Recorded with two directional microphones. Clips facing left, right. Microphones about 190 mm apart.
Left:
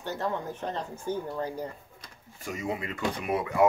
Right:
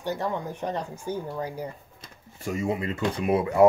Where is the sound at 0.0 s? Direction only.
15° right (ahead or behind).